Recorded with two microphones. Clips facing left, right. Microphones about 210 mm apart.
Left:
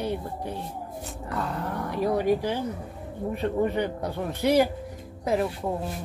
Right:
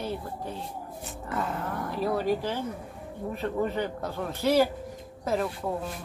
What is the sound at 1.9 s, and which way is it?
Speech, 15° left (ahead or behind).